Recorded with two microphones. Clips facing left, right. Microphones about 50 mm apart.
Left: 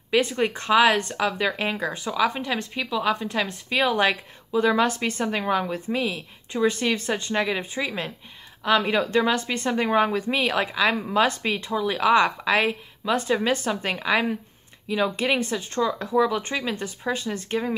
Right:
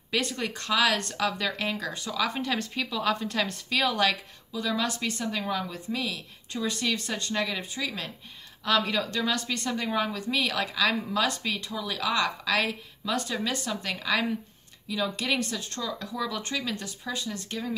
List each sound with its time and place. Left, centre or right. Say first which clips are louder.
0.1 s speech: left 8 dB; centre
0.9 s speech: left 4 dB; centre
3.6 s speech: left 5 dB; centre
4.5 s speech: left 9 dB; left